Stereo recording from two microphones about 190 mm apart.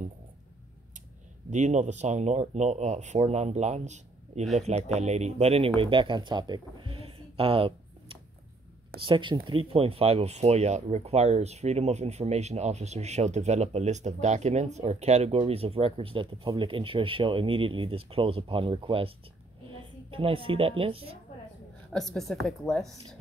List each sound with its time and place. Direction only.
1.5 s speech: 40° right (ahead or behind)
21.9 s a woman's voice: centre (ahead or behind)